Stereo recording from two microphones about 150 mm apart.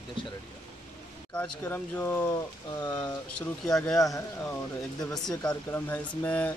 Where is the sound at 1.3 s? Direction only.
10° left (ahead or behind).